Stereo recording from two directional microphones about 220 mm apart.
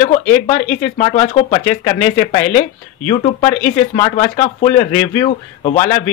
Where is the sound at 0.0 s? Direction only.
30° left (ahead or behind).